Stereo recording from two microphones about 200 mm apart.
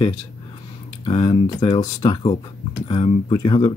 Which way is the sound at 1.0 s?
25° left (ahead or behind).